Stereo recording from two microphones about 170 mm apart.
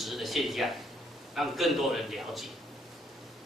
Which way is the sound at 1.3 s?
Centre (ahead or behind).